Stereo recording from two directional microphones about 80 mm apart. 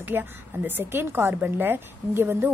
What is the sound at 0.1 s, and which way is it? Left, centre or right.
A woman's voice, right.